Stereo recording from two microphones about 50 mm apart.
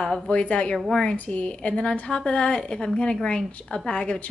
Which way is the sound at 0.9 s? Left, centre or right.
Centre.